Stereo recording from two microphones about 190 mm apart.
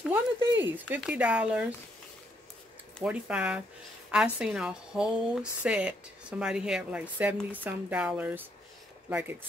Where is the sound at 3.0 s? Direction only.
5° right (ahead or behind).